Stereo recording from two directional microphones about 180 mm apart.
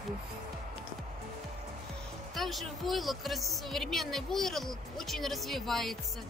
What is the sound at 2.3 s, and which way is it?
A woman's voice, centre (ahead or behind).